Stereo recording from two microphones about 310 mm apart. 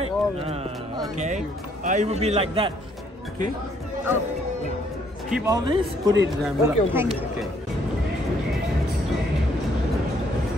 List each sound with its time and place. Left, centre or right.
0.0 s speech: centre
5.3 s a man's voice: centre